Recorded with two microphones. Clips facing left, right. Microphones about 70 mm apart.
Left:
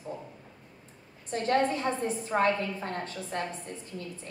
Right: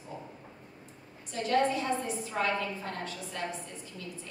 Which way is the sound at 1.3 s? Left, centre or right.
Left.